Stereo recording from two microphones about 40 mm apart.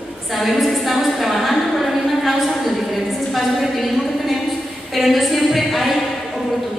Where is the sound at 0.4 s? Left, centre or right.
Centre.